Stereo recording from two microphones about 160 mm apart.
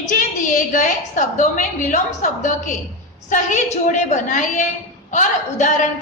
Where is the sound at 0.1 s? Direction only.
50° left (ahead or behind).